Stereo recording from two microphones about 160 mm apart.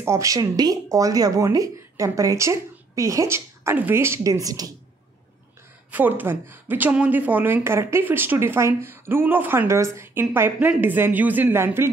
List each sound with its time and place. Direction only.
0.0 s speech: 20° right (ahead or behind)
5.9 s a woman's voice: 10° right (ahead or behind)